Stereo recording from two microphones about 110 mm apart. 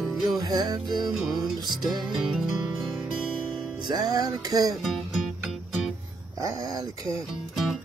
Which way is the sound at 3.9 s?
35° right (ahead or behind).